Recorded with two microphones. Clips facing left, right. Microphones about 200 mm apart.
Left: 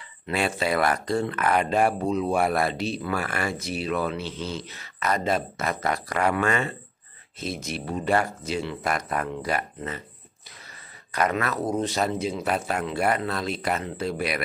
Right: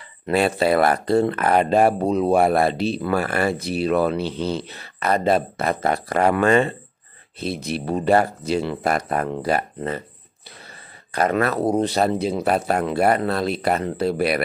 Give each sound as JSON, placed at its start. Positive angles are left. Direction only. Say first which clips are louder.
{"t": 0.3, "sound": "speech", "louder": "right 7 dB", "side_deg": -35}
{"t": 11.1, "sound": "speech", "louder": "right 5 dB", "side_deg": -30}